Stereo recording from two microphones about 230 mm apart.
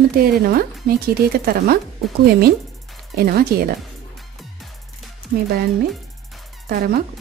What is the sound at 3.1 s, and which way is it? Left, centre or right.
Speech, right.